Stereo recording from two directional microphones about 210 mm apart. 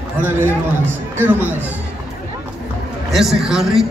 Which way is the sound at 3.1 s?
Centre (ahead or behind).